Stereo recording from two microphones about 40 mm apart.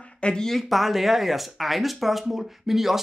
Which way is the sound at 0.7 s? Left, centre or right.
Centre.